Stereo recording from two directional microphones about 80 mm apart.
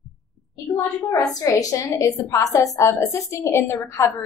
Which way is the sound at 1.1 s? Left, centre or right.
Left.